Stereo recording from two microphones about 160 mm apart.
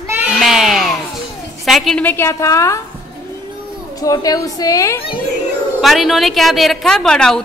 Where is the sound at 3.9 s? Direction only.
20° left (ahead or behind).